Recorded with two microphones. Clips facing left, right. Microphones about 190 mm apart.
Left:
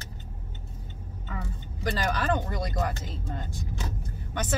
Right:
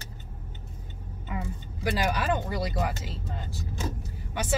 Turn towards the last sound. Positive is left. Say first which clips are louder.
# even
turn(degrees=-5)  # may be behind; listen again after turning